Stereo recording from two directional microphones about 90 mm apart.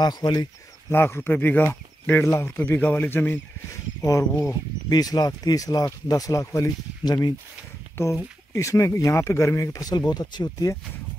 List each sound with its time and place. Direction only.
0.0 s speech: 50° left (ahead or behind)
0.8 s speech: 25° left (ahead or behind)
4.0 s speech: 40° left (ahead or behind)
7.1 s speech: 50° left (ahead or behind)
8.0 s speech: 35° left (ahead or behind)